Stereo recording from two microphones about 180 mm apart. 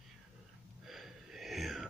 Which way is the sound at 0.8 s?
Centre (ahead or behind).